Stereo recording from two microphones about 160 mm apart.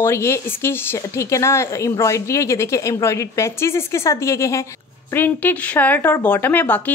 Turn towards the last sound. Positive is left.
turn(degrees=10)  # may be behind; listen again after turning